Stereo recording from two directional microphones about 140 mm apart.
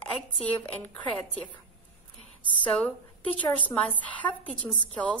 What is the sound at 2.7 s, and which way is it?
Speech, 5° left (ahead or behind).